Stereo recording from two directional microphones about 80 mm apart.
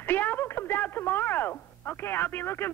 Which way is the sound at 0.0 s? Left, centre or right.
Left.